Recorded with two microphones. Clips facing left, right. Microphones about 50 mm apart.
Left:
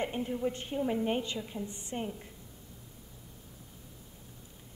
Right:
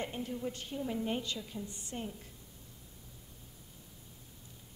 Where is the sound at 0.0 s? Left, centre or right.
Left.